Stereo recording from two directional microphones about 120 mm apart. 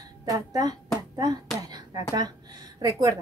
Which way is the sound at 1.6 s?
35° right (ahead or behind).